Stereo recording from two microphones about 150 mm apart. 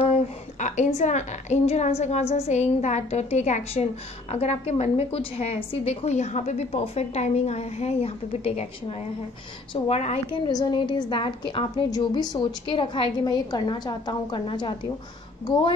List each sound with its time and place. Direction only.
0.0 s a woman's voice: 50° left (ahead or behind)
10.4 s a woman's voice: 30° left (ahead or behind)